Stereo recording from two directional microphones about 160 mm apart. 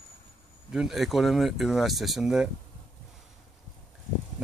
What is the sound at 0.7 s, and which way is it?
Speech, 5° right (ahead or behind).